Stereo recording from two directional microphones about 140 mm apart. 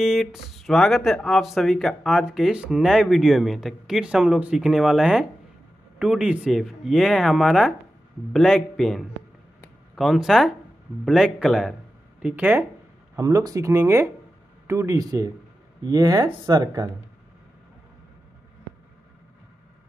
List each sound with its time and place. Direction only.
0.0 s speech: 5° right (ahead or behind)
13.1 s speech: 25° right (ahead or behind)